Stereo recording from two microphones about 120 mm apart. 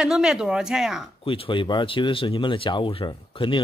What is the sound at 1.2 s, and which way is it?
Speech, 50° left (ahead or behind).